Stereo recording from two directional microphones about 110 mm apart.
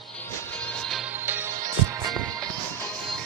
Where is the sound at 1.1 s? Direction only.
20° right (ahead or behind).